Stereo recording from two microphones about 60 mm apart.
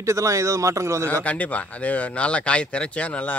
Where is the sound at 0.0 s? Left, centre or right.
Right.